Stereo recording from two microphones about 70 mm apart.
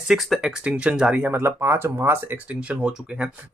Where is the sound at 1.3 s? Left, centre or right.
Right.